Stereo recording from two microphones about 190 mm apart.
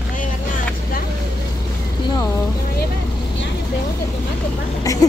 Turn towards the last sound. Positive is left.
turn(degrees=20)  # may be behind; listen again after turning